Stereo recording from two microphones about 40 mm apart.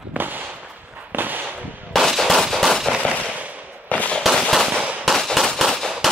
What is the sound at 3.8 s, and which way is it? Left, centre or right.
Firecracker, left.